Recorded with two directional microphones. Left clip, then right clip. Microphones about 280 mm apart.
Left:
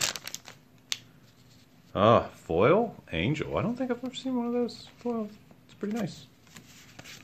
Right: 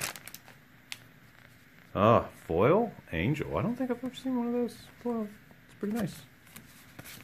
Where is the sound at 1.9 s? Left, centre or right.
Centre.